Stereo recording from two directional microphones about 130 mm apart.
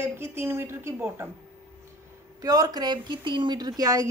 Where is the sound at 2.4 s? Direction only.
30° right (ahead or behind).